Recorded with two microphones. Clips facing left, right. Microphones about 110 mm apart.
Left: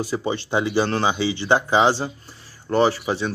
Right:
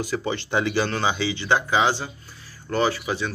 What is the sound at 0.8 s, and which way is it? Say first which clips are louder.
Speech: left 3 dB; 30° left (ahead or behind).